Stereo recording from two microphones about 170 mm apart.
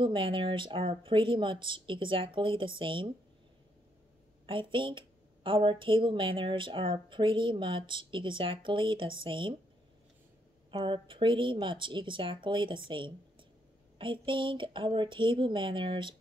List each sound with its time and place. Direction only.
0.0 s a woman's voice: 30° right (ahead or behind)
4.5 s a woman's voice: 30° right (ahead or behind)
10.7 s a woman's voice: 30° right (ahead or behind)